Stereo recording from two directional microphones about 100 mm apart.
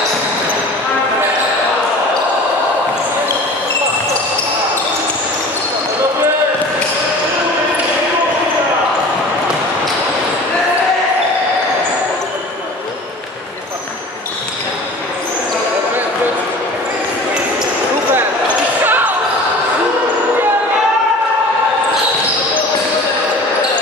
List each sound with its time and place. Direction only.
18.9 s basketball bounce: 20° right (ahead or behind)